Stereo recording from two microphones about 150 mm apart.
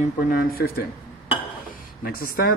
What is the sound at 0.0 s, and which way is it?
Speech, 65° left (ahead or behind).